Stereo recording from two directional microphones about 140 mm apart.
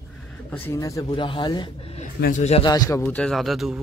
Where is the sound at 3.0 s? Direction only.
5° left (ahead or behind).